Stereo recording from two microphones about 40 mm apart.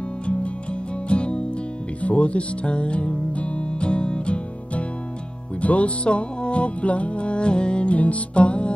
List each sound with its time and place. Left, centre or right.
1.0 s music: left